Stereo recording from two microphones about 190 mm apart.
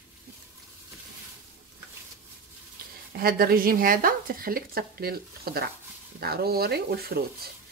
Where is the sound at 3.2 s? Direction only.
50° right (ahead or behind).